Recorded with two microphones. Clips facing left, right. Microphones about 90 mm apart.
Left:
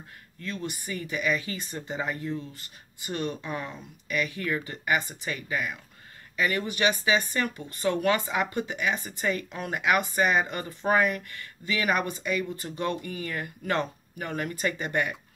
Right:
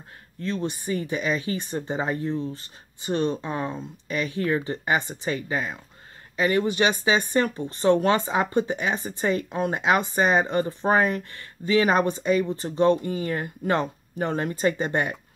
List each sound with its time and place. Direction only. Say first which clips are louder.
0.4 s speech: right 6 dB; 25° right (ahead or behind)